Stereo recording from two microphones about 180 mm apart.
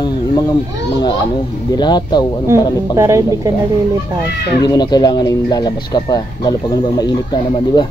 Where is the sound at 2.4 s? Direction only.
15° right (ahead or behind).